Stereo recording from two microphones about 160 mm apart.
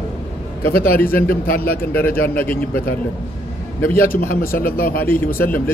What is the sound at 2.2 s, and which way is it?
Speech, 65° left (ahead or behind).